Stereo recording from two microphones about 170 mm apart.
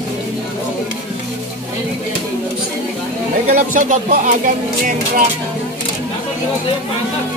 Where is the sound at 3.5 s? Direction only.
50° right (ahead or behind).